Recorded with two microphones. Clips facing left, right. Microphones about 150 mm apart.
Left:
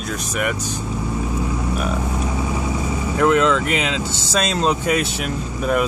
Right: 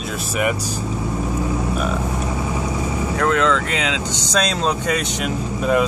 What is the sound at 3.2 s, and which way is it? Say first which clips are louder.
Speech: left 3 dB; 10° left (ahead or behind).